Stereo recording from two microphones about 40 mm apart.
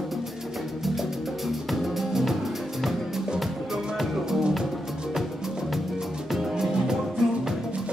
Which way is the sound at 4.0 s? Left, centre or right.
Centre.